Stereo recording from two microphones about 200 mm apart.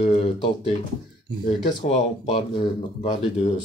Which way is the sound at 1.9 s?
25° left (ahead or behind).